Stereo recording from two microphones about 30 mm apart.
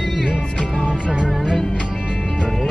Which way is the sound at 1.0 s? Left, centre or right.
Right.